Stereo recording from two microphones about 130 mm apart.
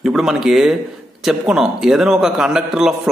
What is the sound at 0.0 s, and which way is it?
A man's voice, 5° right (ahead or behind).